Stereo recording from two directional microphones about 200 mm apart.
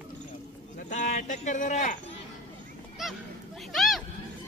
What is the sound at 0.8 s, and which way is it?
Speech, 40° left (ahead or behind).